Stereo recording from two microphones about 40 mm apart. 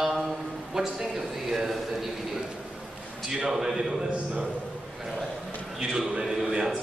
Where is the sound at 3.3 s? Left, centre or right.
Centre.